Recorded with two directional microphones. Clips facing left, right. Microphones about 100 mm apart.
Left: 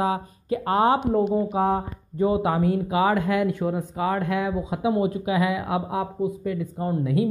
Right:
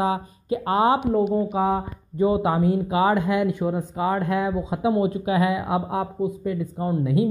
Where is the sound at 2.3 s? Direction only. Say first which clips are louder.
Right 1 dB; 25° right (ahead or behind).